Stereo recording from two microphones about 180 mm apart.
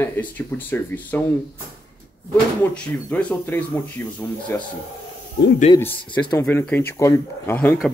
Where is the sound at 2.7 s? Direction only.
5° left (ahead or behind).